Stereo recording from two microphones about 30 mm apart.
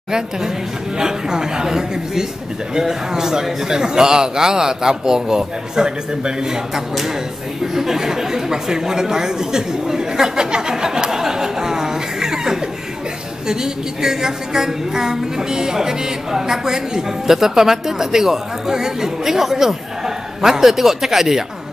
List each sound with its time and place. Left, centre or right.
0.9 s a man's voice: right
6.7 s a woman's voice: centre
7.6 s a sound: centre
13.5 s a woman's voice: centre